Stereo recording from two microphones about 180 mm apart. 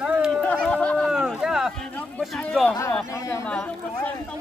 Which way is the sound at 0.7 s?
5° left (ahead or behind).